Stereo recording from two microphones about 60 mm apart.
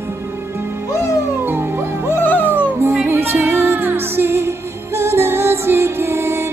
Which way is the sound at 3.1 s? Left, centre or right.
Right.